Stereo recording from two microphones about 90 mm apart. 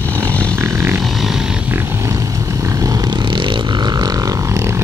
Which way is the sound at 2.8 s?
45° right (ahead or behind).